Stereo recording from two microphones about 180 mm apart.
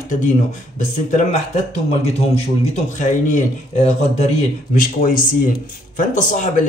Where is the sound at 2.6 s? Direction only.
45° left (ahead or behind).